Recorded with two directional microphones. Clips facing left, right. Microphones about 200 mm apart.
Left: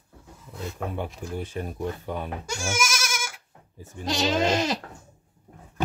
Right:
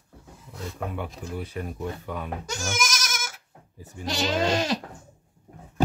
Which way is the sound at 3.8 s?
20° left (ahead or behind).